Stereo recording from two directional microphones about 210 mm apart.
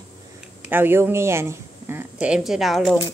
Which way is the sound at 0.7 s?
10° right (ahead or behind).